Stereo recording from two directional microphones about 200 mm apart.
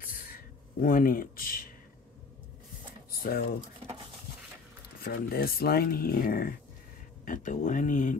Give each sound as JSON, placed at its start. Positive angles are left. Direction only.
{"t": 0.0, "sound": "a sound", "side_deg": 45}
{"t": 3.1, "sound": "speech", "side_deg": 45}
{"t": 5.0, "sound": "speech", "side_deg": 50}